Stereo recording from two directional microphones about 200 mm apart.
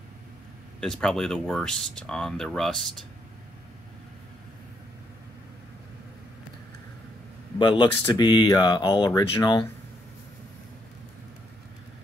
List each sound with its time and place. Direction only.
0.7 s speech: 5° left (ahead or behind)
7.5 s speech: 25° left (ahead or behind)